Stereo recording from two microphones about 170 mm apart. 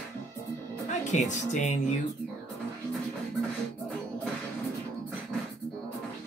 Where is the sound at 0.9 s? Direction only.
45° left (ahead or behind).